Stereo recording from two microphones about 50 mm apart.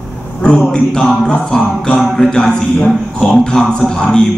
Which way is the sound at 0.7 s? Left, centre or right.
Centre.